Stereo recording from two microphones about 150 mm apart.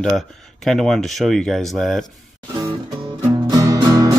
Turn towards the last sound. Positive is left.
turn(degrees=-25)  # may be behind; listen again after turning